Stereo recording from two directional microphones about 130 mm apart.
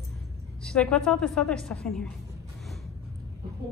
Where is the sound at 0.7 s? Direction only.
5° left (ahead or behind).